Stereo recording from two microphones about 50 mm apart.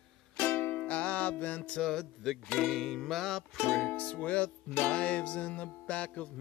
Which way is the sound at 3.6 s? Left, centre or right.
Centre.